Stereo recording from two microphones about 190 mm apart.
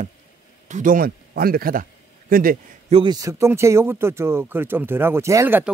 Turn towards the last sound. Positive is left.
turn(degrees=-10)  # may be behind; listen again after turning